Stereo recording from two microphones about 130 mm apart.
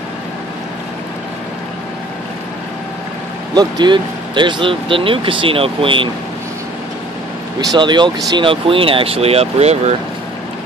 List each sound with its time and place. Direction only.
3.5 s speech: 35° right (ahead or behind)
7.7 s speech: 35° right (ahead or behind); by 9.9 s 55° right (ahead or behind)